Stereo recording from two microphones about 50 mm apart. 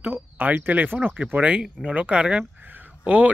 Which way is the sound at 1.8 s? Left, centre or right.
Right.